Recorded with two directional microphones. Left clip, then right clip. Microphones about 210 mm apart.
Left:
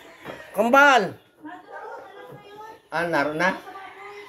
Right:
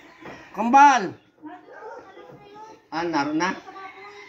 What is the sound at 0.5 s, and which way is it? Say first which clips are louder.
Speech: right 1 dB; 50° left (ahead or behind).